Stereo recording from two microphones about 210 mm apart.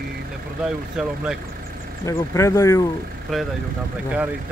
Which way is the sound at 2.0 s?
15° left (ahead or behind).